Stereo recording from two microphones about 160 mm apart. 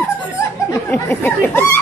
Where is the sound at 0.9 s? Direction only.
10° left (ahead or behind).